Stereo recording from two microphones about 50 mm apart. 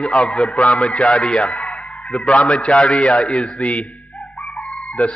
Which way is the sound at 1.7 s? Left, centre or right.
Left.